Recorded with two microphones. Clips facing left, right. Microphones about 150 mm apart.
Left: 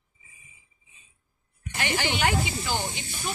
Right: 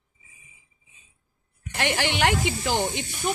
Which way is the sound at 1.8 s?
75° right (ahead or behind).